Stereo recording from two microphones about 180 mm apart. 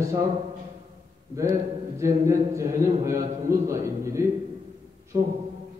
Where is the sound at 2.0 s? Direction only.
15° right (ahead or behind).